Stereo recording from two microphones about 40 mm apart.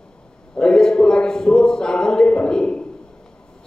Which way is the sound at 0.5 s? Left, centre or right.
Centre.